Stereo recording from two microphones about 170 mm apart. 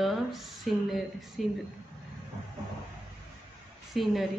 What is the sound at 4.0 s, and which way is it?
Speech, centre (ahead or behind).